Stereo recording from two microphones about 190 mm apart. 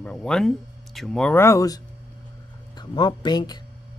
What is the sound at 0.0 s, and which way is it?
Speech, 5° left (ahead or behind).